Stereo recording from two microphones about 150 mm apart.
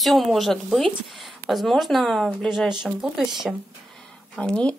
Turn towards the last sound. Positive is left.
turn(degrees=5)  # may be behind; listen again after turning